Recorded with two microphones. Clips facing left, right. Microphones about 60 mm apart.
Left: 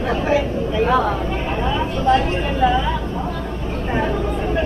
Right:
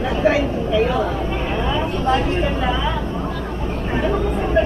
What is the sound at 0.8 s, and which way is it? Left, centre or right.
Speech, left.